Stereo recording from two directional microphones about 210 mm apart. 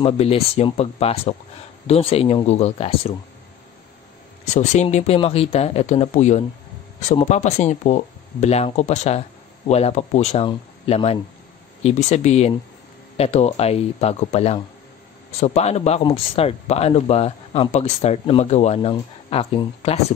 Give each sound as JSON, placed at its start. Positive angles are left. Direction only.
{"t": 0.0, "sound": "speech", "side_deg": 30}
{"t": 4.6, "sound": "speech", "side_deg": 35}